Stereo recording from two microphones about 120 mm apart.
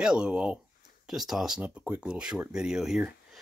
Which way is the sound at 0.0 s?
5° right (ahead or behind).